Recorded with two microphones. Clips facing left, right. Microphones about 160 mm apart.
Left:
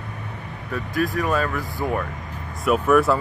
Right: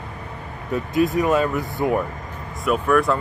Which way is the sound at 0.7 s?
20° right (ahead or behind).